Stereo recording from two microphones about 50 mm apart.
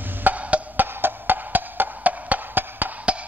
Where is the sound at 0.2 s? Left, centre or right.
Right.